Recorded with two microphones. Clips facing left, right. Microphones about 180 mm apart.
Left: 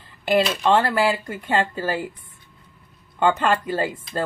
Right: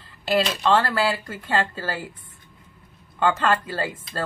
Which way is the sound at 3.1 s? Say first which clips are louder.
Left 2 dB; 20° left (ahead or behind).